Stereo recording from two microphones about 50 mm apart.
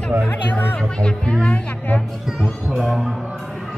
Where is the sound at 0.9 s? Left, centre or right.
Centre.